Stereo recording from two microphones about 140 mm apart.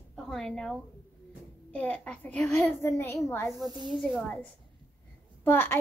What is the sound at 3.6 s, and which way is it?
Speech, 30° right (ahead or behind).